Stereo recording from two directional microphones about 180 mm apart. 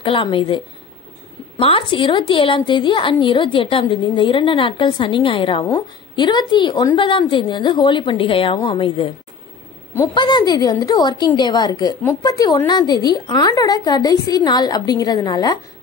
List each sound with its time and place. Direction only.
0.0 s a woman's voice: 30° left (ahead or behind)
1.6 s a woman's voice: 30° left (ahead or behind)
10.1 s a woman's voice: 25° left (ahead or behind)